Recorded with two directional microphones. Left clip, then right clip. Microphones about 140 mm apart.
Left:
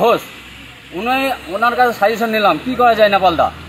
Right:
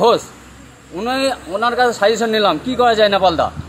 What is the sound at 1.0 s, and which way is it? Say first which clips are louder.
A man's voice: left 1 dB; 15° right (ahead or behind).